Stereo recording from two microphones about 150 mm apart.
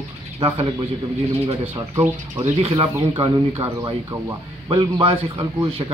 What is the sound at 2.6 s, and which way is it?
A man's voice, 35° right (ahead or behind).